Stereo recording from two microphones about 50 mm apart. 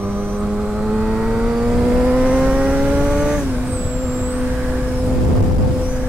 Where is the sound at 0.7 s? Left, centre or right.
Centre.